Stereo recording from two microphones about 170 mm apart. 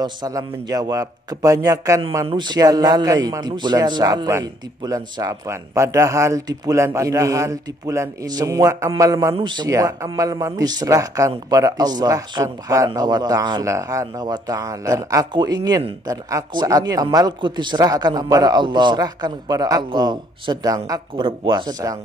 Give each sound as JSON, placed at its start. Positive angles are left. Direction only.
{"t": 0.0, "sound": "a man's voice", "side_deg": -20}